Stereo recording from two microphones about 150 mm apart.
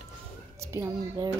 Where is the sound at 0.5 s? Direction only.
20° right (ahead or behind).